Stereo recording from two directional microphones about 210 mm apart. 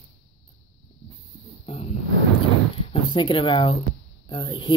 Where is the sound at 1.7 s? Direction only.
25° left (ahead or behind).